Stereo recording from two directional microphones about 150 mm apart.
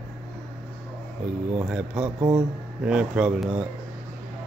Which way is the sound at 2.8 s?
5° right (ahead or behind).